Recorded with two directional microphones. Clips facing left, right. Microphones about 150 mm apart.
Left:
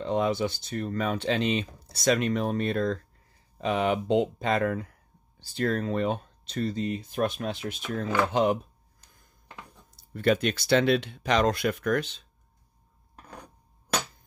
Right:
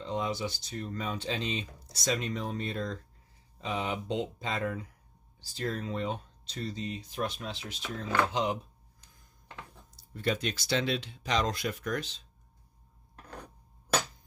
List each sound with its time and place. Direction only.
0.0 s speech: 60° left (ahead or behind)
10.1 s speech: 65° left (ahead or behind)